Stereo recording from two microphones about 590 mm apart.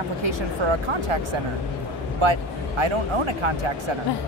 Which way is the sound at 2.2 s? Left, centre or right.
Right.